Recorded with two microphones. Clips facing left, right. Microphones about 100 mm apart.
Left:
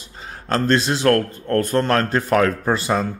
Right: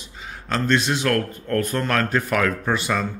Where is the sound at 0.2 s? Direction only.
40° left (ahead or behind).